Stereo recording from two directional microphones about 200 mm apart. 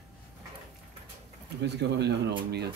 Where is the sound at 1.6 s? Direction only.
60° right (ahead or behind).